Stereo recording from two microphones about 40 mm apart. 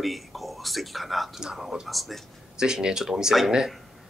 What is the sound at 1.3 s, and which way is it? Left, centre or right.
Speech, centre.